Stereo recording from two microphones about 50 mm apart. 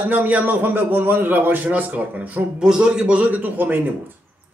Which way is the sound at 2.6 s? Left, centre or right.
Centre.